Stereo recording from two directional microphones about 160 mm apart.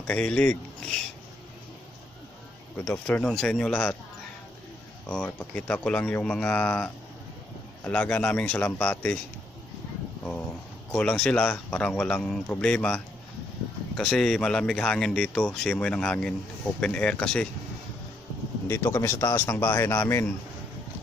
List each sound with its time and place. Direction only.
0.0 s speech: 10° left (ahead or behind)
2.8 s speech: 10° left (ahead or behind)
5.0 s speech: 5° left (ahead or behind)
10.9 s speech: 5° left (ahead or behind)
18.7 s speech: 15° left (ahead or behind)